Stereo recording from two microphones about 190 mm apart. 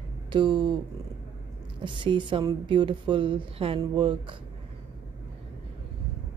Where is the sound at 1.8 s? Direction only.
25° right (ahead or behind).